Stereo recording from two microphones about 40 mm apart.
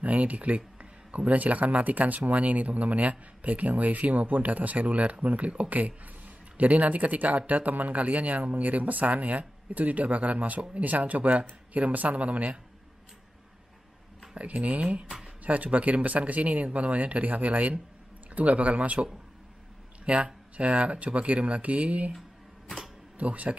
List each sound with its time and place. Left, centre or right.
0.0 s speech: right
14.3 s speech: right
20.1 s speech: right
23.1 s speech: right